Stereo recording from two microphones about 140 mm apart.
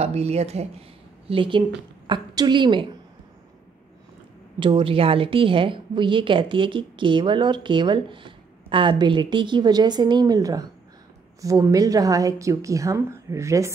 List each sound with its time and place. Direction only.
0.0 s a woman's voice: 50° right (ahead or behind)
4.6 s a woman's voice: 40° right (ahead or behind); by 13.7 s 20° right (ahead or behind)